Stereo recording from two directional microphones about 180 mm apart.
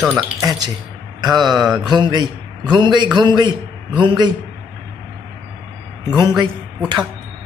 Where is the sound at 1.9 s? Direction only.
25° right (ahead or behind).